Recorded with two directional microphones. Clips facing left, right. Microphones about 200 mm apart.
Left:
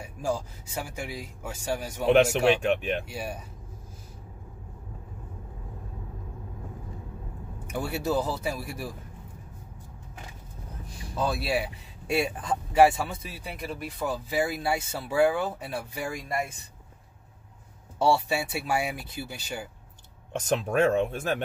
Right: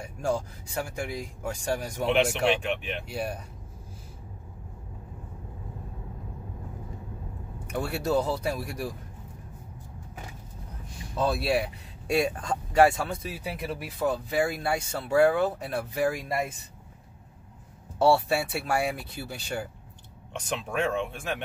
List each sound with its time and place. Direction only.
0.0 s speech: centre (ahead or behind)
2.6 s speech: 45° left (ahead or behind)
3.1 s speech: centre (ahead or behind)
7.7 s speech: 5° left (ahead or behind)
11.1 s speech: centre (ahead or behind)
17.9 s speech: centre (ahead or behind)
20.3 s speech: 40° left (ahead or behind)